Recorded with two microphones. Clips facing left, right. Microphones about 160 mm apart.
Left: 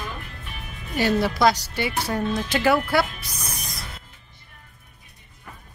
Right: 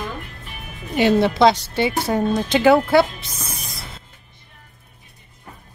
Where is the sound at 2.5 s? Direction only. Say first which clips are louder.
Right 7 dB; 25° right (ahead or behind).